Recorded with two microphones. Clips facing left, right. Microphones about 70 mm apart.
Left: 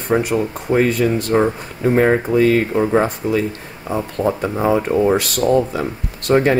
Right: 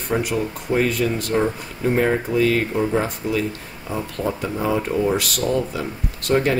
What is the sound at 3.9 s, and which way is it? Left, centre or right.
Speech, left.